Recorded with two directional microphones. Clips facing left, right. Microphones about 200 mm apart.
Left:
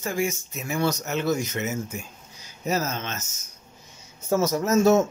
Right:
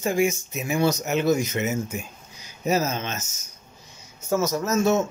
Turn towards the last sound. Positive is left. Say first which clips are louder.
# left 3 dB
turn(degrees=35)  # may be behind; listen again after turning